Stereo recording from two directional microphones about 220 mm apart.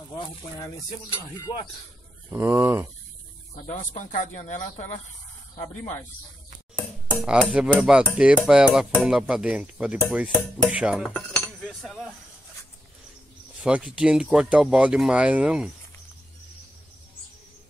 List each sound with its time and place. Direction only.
1.1 s speech: 20° left (ahead or behind)
2.3 s speech: 10° right (ahead or behind)
3.6 s speech: 35° left (ahead or behind)
6.7 s a sound: 5° left (ahead or behind)
7.2 s dishes: 5° right (ahead or behind)
11.3 s cutlery: centre (ahead or behind)
13.6 s dishes: 5° right (ahead or behind)